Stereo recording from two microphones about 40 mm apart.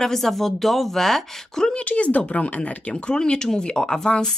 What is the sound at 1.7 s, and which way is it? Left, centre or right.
Speech, left.